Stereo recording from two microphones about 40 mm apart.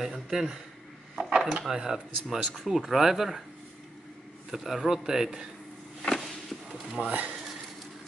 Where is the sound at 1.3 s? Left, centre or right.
Centre.